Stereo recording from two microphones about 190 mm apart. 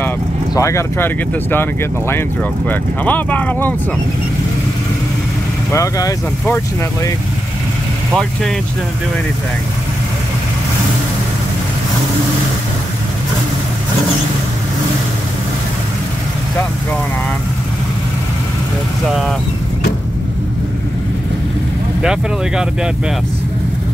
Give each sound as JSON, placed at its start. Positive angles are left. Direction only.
{"t": 0.6, "sound": "speech", "side_deg": 15}
{"t": 5.7, "sound": "speech", "side_deg": 15}
{"t": 8.1, "sound": "speech", "side_deg": 0}
{"t": 19.0, "sound": "speech", "side_deg": 0}
{"t": 22.0, "sound": "speech", "side_deg": -5}